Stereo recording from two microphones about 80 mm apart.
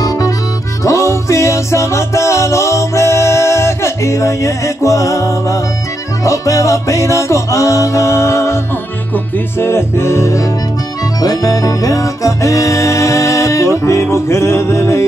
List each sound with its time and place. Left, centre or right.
0.0 s music: left
11.1 s music: left